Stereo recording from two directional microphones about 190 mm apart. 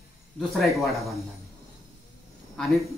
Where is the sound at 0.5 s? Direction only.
Centre (ahead or behind).